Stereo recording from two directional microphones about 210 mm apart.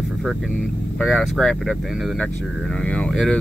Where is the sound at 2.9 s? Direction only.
5° left (ahead or behind).